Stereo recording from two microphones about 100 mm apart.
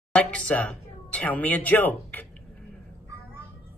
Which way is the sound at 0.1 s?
15° left (ahead or behind).